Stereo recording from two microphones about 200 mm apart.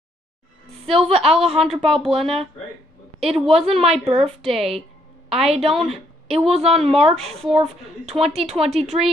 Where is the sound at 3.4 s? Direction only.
30° right (ahead or behind).